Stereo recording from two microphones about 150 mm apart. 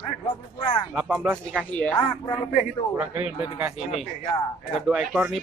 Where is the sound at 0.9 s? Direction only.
5° right (ahead or behind).